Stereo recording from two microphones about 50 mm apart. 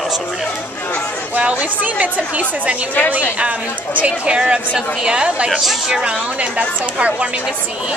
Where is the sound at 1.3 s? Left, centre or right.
Right.